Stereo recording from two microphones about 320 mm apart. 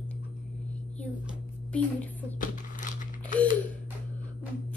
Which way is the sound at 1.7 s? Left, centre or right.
Centre.